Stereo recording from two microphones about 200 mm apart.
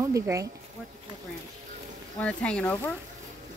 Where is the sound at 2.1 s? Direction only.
5° left (ahead or behind).